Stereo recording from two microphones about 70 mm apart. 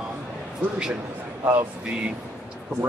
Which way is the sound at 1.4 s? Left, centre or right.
Right.